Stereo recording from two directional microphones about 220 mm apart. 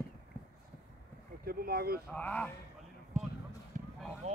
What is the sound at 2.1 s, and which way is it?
Speech, 5° left (ahead or behind).